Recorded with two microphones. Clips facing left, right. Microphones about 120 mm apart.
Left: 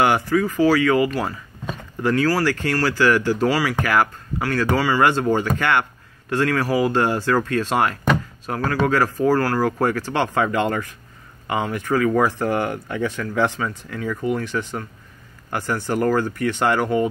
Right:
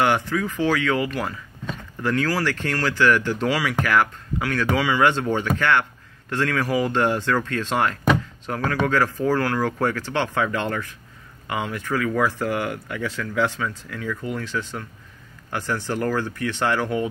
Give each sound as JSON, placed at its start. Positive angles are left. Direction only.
{"t": 0.0, "sound": "speech", "side_deg": 10}
{"t": 12.1, "sound": "speech", "side_deg": 20}